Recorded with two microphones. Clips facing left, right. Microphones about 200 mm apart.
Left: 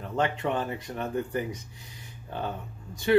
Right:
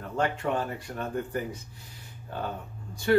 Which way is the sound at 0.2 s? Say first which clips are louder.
Even; 20° left (ahead or behind).